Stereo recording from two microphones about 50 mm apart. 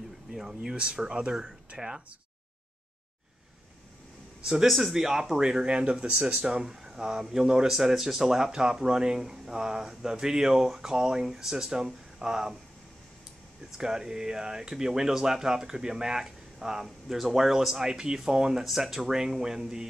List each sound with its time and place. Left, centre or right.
0.3 s speech: centre
4.6 s speech: centre
13.7 s speech: centre